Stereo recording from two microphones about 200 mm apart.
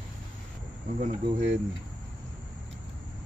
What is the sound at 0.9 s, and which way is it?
Speech, 40° right (ahead or behind).